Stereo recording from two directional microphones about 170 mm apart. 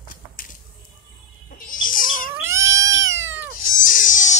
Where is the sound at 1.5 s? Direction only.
55° left (ahead or behind).